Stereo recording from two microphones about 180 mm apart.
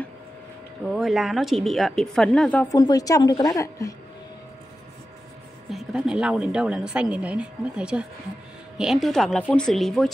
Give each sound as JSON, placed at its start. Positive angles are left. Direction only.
{"t": 0.8, "sound": "a woman's voice", "side_deg": 0}
{"t": 2.7, "sound": "a woman's voice", "side_deg": 20}
{"t": 5.7, "sound": "a woman's voice", "side_deg": 0}